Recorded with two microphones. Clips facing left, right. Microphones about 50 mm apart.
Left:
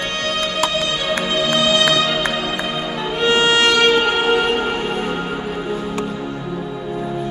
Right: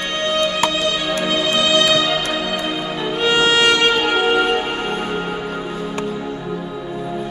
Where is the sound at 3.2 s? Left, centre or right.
Left.